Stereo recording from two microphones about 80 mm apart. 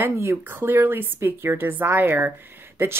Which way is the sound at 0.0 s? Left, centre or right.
Right.